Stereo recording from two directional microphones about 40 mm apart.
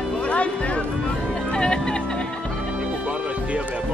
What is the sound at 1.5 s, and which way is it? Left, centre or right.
Music, left.